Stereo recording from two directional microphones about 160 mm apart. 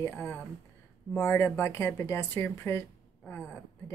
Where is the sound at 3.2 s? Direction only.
5° left (ahead or behind).